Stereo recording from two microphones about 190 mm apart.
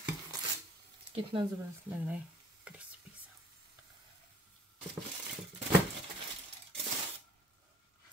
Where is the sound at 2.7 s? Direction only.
5° right (ahead or behind).